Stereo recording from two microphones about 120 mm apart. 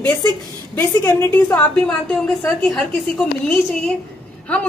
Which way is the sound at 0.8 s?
15° left (ahead or behind).